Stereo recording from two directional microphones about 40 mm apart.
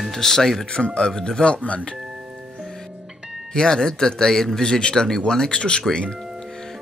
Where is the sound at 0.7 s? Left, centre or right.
Left.